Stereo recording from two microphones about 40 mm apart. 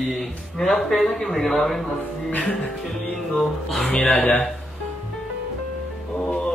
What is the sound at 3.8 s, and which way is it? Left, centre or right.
Speech, left.